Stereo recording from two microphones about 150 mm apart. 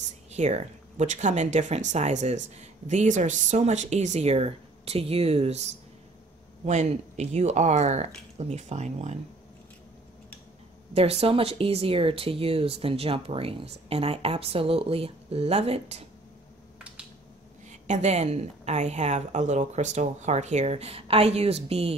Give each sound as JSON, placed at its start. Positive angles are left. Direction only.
{"t": 0.3, "sound": "speech", "side_deg": -50}
{"t": 11.0, "sound": "speech", "side_deg": -40}
{"t": 17.6, "sound": "speech", "side_deg": -50}